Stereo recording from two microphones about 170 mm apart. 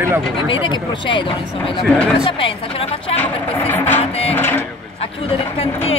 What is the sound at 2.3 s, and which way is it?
Speech, 30° left (ahead or behind).